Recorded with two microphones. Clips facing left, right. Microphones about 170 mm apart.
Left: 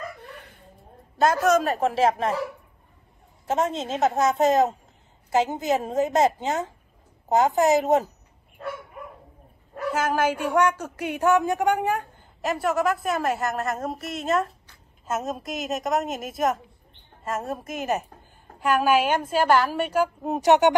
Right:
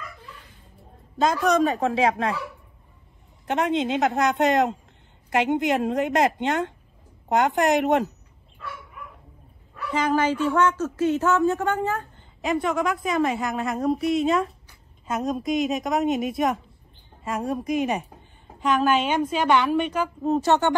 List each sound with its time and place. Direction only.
0.2 s a sound: 65° left (ahead or behind)
1.1 s a woman's voice: 5° left (ahead or behind)
3.4 s a woman's voice: centre (ahead or behind)
8.5 s bow-wow: 40° left (ahead or behind)
9.9 s a woman's voice: 10° left (ahead or behind)